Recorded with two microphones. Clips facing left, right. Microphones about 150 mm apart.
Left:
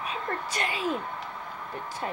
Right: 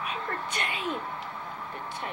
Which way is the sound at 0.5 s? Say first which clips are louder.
Left 5 dB; 35° left (ahead or behind).